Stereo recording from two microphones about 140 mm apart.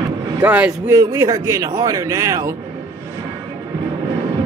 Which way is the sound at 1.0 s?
25° right (ahead or behind).